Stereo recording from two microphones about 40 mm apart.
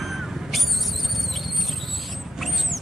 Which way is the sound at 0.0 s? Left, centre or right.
Centre.